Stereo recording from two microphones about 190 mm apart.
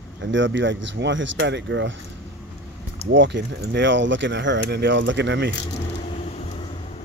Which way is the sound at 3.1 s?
70° right (ahead or behind).